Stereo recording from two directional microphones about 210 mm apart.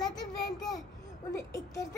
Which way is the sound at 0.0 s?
20° left (ahead or behind).